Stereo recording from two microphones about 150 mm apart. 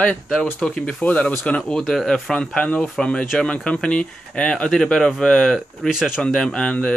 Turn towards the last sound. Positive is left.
turn(degrees=5)  # may be behind; listen again after turning